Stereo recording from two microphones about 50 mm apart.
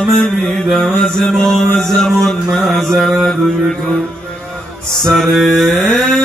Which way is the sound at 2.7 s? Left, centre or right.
Centre.